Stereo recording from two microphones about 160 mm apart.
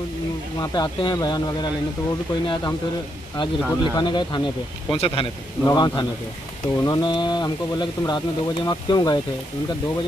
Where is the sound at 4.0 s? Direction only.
30° left (ahead or behind).